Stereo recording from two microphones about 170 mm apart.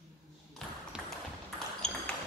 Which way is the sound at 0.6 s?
5° left (ahead or behind).